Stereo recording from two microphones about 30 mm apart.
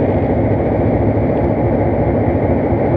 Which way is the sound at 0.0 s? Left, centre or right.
Centre.